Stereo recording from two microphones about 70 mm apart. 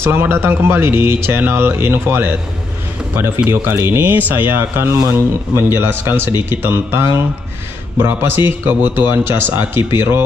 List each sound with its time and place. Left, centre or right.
0.0 s speech: right
3.4 s speech: right